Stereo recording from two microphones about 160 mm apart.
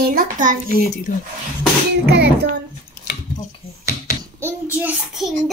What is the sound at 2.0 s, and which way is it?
Music, 90° right.